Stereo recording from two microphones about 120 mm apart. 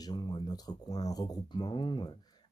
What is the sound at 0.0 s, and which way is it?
Speech, 35° left (ahead or behind).